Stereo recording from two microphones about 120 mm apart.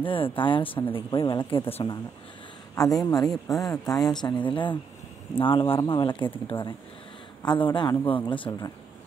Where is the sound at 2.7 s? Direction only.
30° left (ahead or behind).